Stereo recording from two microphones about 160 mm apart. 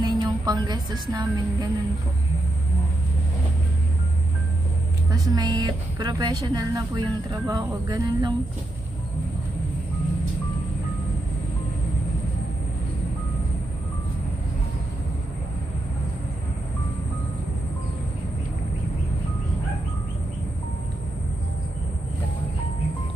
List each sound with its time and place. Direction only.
0.0 s speech: 25° right (ahead or behind)
5.1 s a woman's voice: 25° right (ahead or behind)